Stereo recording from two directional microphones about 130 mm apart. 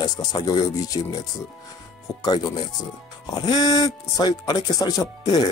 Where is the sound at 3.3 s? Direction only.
30° left (ahead or behind).